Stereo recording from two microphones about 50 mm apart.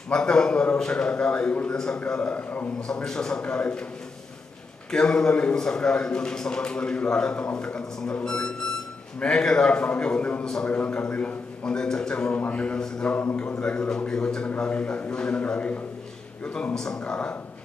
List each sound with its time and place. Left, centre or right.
0.1 s a man's voice: centre
2.9 s a man's voice: centre
4.9 s a man's voice: centre
10.4 s a man's voice: centre
10.7 s a man's voice: left
11.6 s a man's voice: centre
13.0 s speech: left
13.6 s a man's voice: centre
16.7 s a man's voice: centre
17.0 s a man's voice: left